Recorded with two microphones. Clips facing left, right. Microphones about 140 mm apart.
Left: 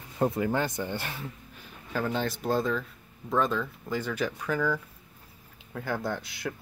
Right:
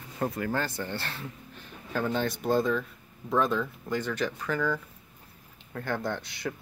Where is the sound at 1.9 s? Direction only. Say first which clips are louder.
Right 1 dB; centre (ahead or behind).